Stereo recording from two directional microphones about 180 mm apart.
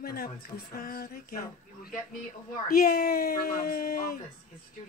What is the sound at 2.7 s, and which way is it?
Speech, 55° left (ahead or behind).